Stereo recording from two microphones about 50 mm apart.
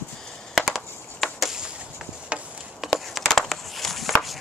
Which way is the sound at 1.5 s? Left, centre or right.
Centre.